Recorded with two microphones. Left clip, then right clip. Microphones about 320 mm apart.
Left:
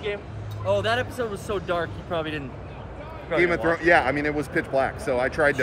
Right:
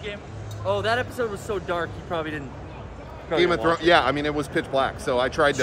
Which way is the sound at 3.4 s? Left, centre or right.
Centre.